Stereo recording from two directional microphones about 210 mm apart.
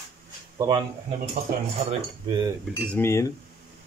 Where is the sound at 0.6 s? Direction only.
20° right (ahead or behind).